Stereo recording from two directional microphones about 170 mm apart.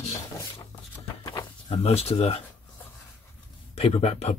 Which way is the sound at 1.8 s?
35° left (ahead or behind).